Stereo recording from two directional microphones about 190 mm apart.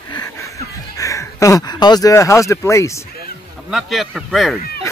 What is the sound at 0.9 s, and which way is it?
Speech, 15° left (ahead or behind).